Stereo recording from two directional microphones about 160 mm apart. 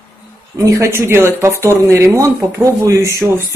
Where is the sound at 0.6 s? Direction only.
20° right (ahead or behind).